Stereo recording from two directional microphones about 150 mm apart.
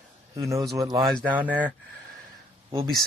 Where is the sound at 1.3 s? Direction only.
10° right (ahead or behind).